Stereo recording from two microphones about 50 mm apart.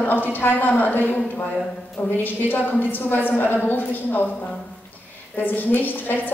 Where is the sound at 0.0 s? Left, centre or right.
Left.